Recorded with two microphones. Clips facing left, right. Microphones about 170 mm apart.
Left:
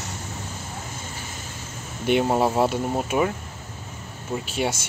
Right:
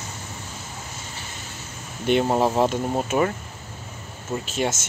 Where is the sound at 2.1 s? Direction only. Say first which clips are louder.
Even; 10° left (ahead or behind).